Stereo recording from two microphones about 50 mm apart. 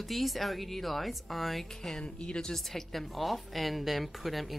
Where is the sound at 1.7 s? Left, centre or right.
Centre.